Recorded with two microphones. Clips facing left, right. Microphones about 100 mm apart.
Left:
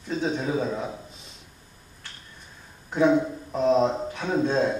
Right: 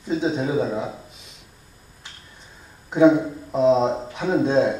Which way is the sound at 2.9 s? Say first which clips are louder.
Right 5 dB; 15° right (ahead or behind).